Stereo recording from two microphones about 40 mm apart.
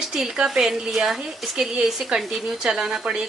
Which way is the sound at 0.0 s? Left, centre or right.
Centre.